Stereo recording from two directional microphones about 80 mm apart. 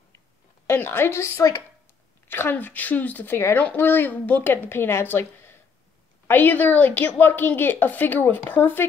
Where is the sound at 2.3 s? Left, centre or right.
Left.